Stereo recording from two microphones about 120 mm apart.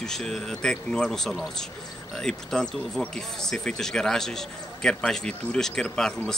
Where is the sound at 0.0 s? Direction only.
5° left (ahead or behind).